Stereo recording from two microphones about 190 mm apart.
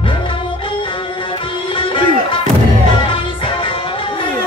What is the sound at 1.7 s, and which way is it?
Music, 25° left (ahead or behind).